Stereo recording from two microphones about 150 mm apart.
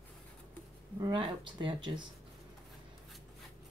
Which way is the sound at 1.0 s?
35° right (ahead or behind).